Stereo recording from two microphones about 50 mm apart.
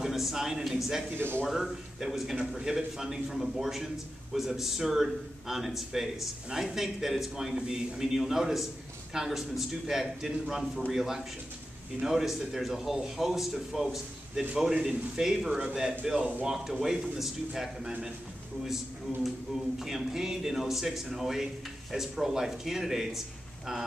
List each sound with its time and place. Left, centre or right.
0.0 s a man's voice: centre
1.1 s speech: right
1.5 s a man's voice: centre
19.2 s a man's voice: centre